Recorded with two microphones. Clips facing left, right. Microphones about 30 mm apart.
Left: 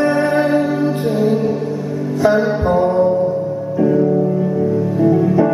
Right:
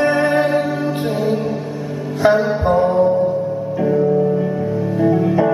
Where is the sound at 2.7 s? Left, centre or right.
Centre.